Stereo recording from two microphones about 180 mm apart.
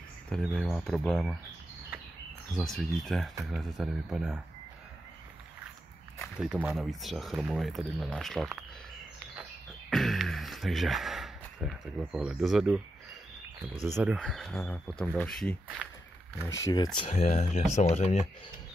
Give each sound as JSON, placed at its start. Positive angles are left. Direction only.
{"t": 0.5, "sound": "speech", "side_deg": 5}
{"t": 2.5, "sound": "speech", "side_deg": 0}
{"t": 6.4, "sound": "speech", "side_deg": -5}
{"t": 9.4, "sound": "a sound", "side_deg": 0}
{"t": 13.9, "sound": "speech", "side_deg": -5}
{"t": 16.4, "sound": "speech", "side_deg": 15}
{"t": 17.1, "sound": "speech", "side_deg": 40}